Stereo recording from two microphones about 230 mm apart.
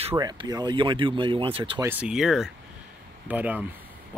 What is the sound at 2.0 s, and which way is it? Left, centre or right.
Speech, centre.